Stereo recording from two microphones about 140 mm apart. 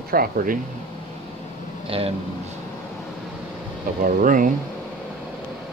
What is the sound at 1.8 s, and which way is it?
Speech, 40° right (ahead or behind).